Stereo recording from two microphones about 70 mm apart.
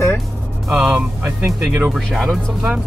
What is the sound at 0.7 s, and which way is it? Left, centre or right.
Speech, right.